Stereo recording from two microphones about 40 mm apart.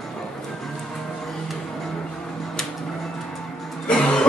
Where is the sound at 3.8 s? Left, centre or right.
Left.